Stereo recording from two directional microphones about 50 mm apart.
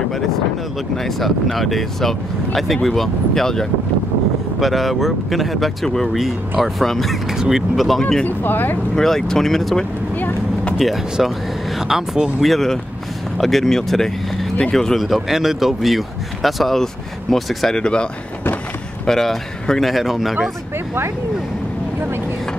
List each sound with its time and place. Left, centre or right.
1.0 s speech: centre
4.6 s speech: centre
7.3 s speech: centre
8.2 s speech: left
8.9 s speech: centre
10.1 s a sound: left
11.9 s speech: centre
15.0 s speech: centre
17.7 s speech: centre
19.0 s speech: centre